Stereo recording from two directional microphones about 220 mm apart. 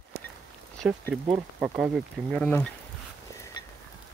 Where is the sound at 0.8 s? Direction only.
10° right (ahead or behind).